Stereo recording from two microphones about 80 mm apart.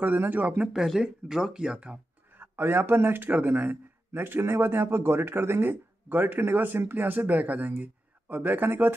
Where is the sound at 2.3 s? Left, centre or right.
Right.